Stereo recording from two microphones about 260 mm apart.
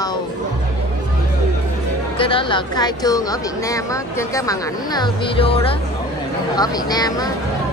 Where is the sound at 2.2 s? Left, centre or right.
Centre.